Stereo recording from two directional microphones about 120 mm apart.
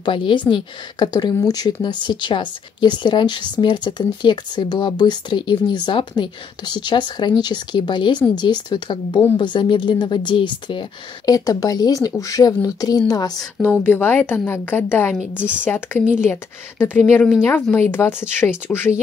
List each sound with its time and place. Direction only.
0.0 s speech: 45° left (ahead or behind)
13.7 s a woman's voice: 15° left (ahead or behind)
15.1 s a woman's voice: 10° right (ahead or behind)
15.6 s a woman's voice: 15° left (ahead or behind)